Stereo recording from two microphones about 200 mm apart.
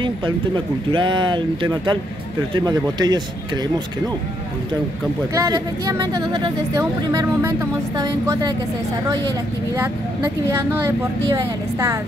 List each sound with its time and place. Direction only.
0.8 s speech: 25° right (ahead or behind)
5.3 s speech: 20° right (ahead or behind)
9.8 s speech: 10° right (ahead or behind)